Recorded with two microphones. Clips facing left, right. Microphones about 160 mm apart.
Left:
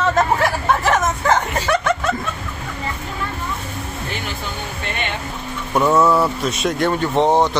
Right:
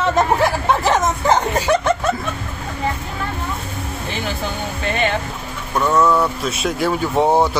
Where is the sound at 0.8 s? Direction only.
15° right (ahead or behind).